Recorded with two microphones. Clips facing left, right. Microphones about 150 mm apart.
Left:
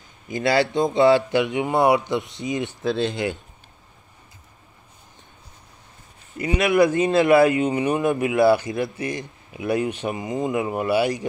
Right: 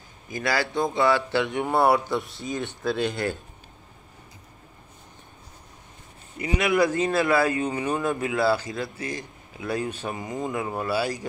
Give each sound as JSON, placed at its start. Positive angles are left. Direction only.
{"t": 0.3, "sound": "speech", "side_deg": 25}
{"t": 6.4, "sound": "speech", "side_deg": 25}